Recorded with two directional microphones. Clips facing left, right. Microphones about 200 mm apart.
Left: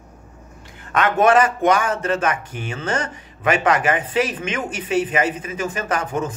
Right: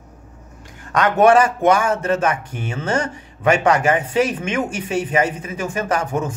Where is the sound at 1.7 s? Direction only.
25° right (ahead or behind).